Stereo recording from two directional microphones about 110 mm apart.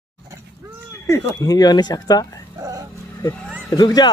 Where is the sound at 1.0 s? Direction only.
30° left (ahead or behind).